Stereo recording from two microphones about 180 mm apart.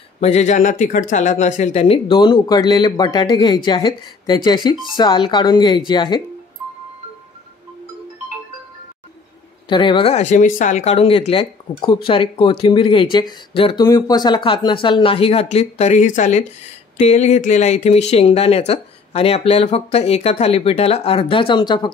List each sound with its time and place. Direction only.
0.2 s speech: 40° left (ahead or behind); by 6.2 s 25° left (ahead or behind)
9.7 s speech: 25° left (ahead or behind)